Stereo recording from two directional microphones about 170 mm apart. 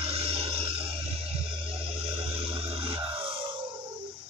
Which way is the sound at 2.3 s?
35° right (ahead or behind).